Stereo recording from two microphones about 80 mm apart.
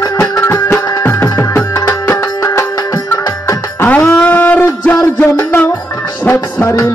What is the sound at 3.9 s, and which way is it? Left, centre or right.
Music, centre.